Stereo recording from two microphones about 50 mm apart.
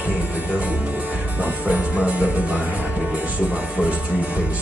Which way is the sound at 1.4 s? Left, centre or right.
Right.